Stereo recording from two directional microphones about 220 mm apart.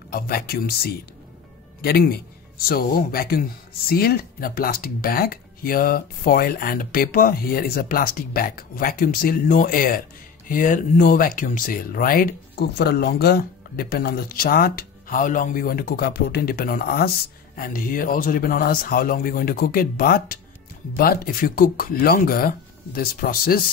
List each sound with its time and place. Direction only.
0.1 s a man's voice: 40° left (ahead or behind)